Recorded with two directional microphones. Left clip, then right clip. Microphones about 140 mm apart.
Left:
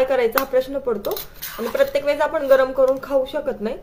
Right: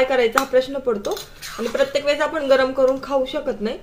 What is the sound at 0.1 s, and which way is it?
Speech, 15° right (ahead or behind).